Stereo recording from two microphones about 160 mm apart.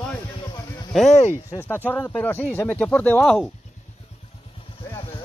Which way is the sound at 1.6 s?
10° left (ahead or behind).